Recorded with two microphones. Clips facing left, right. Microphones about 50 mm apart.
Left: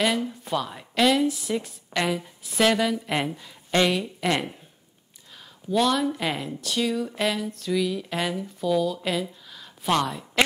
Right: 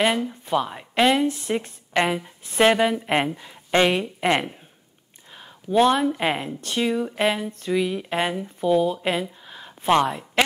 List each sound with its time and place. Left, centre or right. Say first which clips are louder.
0.3 s speech: right 4 dB; right